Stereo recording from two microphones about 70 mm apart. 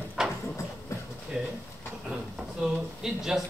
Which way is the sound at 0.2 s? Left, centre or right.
Centre.